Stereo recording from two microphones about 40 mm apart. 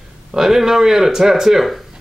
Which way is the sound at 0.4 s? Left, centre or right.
Centre.